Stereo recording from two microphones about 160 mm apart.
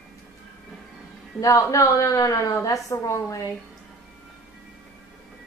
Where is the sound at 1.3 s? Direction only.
20° left (ahead or behind).